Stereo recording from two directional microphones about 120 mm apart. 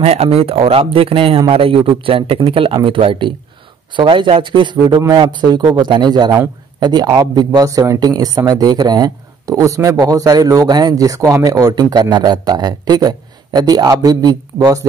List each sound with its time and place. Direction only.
0.0 s a man's voice: 60° right (ahead or behind); by 4.7 s 45° right (ahead or behind)
4.8 s speech: 30° right (ahead or behind)